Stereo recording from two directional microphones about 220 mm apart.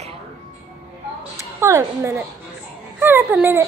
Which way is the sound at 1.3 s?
15° right (ahead or behind).